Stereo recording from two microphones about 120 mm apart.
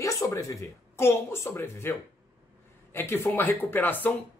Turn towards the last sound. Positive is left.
turn(degrees=15)  # may be behind; listen again after turning